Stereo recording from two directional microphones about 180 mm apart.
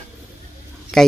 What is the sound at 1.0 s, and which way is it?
Speech, centre (ahead or behind).